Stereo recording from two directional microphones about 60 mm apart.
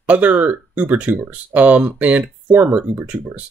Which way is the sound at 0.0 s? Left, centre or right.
Right.